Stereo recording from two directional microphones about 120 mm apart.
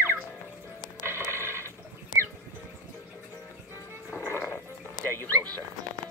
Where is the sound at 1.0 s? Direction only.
20° right (ahead or behind).